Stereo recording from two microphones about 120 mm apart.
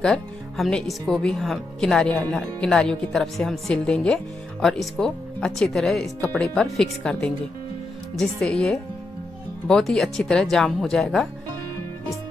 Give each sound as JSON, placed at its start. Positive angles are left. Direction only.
{"t": 0.0, "sound": "speech", "side_deg": 5}